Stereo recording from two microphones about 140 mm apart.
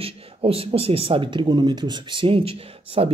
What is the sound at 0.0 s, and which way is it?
Speech, 40° right (ahead or behind).